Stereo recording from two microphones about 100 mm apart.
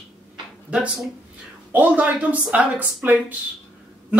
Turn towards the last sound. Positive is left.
turn(degrees=-15)  # may be behind; listen again after turning